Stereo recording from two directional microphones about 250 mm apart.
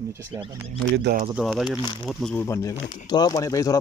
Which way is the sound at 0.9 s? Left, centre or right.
Right.